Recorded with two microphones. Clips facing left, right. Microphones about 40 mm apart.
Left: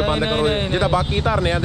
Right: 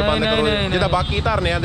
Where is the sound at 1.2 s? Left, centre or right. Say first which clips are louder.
Even; right.